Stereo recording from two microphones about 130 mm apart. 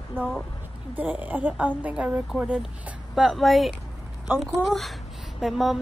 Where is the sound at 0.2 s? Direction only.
15° right (ahead or behind).